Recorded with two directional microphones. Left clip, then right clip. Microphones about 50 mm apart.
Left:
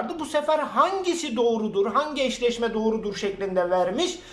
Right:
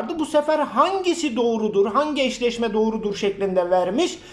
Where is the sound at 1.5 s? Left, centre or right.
Right.